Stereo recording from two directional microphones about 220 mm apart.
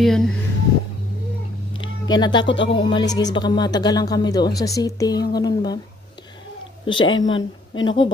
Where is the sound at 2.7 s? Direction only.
20° left (ahead or behind).